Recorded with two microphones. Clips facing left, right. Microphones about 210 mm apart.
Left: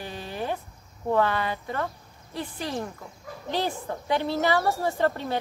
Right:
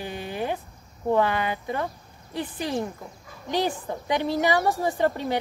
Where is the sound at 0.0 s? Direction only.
15° right (ahead or behind).